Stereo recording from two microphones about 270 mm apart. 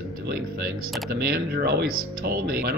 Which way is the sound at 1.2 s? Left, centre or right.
Right.